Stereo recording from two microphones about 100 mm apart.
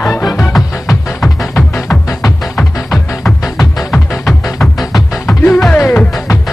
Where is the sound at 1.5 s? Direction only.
25° left (ahead or behind).